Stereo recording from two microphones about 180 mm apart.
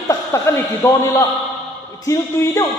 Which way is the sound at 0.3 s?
15° left (ahead or behind).